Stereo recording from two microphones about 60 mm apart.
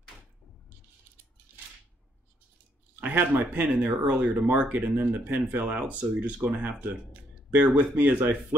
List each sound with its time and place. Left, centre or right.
3.0 s speech: right
3.7 s speech: centre